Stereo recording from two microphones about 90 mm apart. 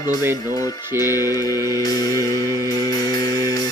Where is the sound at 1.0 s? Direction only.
40° left (ahead or behind).